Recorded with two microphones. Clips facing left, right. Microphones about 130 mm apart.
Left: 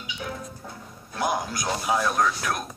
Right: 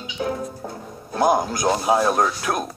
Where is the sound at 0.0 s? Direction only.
40° right (ahead or behind).